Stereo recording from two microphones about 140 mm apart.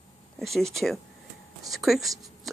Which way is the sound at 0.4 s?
Centre (ahead or behind).